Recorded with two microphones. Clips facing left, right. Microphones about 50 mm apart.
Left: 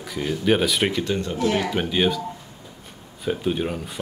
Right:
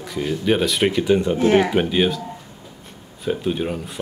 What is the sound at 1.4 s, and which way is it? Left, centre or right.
Speech, right.